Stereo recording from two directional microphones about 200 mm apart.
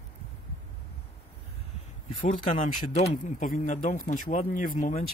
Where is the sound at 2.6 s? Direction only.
35° left (ahead or behind).